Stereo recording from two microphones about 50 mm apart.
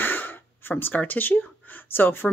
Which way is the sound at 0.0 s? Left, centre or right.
Left.